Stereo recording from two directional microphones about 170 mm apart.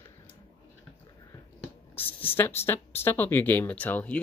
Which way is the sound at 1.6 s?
10° left (ahead or behind).